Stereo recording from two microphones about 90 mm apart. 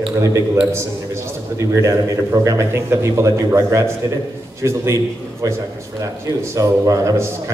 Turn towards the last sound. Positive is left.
turn(degrees=-40)  # may be behind; listen again after turning